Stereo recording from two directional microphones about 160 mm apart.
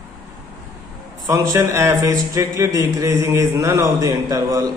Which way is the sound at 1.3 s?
20° right (ahead or behind).